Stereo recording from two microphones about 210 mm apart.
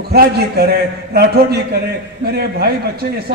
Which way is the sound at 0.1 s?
45° right (ahead or behind).